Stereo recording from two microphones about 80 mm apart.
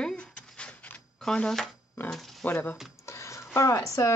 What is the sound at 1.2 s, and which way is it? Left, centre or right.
Speech, centre.